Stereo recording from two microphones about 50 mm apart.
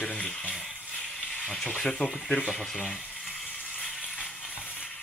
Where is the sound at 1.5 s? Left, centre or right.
Centre.